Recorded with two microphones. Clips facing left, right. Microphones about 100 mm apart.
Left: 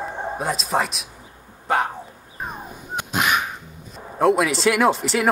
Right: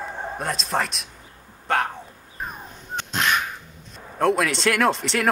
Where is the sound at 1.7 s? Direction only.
5° left (ahead or behind).